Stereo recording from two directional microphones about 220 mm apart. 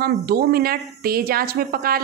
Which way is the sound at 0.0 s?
45° right (ahead or behind).